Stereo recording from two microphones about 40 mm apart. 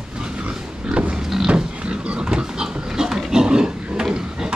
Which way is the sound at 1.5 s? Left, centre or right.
Right.